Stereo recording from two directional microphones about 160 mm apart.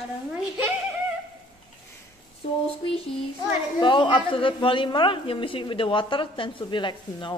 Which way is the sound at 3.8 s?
30° left (ahead or behind).